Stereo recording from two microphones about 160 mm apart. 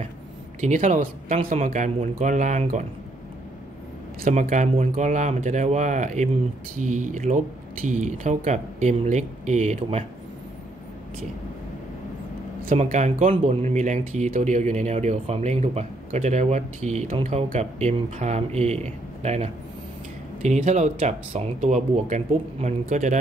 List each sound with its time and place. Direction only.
0.6 s speech: 50° right (ahead or behind)
4.2 s speech: 50° right (ahead or behind)
12.7 s speech: 50° right (ahead or behind)